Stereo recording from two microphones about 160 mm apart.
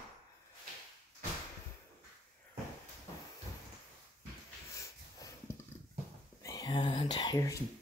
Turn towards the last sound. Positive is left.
turn(degrees=20)  # may be behind; listen again after turning